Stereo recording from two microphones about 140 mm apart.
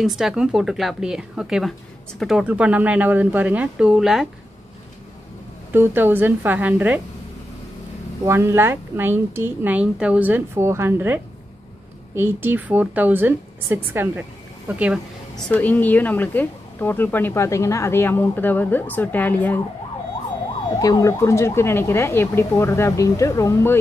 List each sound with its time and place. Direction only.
0.0 s a woman's voice: 5° right (ahead or behind)
5.7 s a woman's voice: 15° right (ahead or behind)
8.3 s a woman's voice: 20° right (ahead or behind)
12.2 s a woman's voice: 15° right (ahead or behind)
15.3 s speech: 10° left (ahead or behind)
20.7 s speech: 25° left (ahead or behind)